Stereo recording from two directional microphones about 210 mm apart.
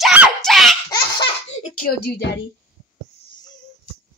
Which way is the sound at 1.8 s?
50° left (ahead or behind).